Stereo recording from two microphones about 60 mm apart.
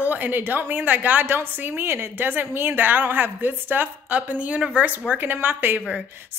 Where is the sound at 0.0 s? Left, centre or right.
Right.